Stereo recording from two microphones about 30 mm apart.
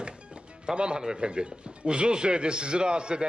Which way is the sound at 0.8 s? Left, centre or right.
Right.